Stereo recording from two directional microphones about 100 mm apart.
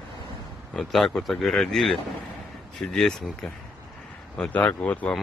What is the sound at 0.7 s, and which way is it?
Speech, centre (ahead or behind).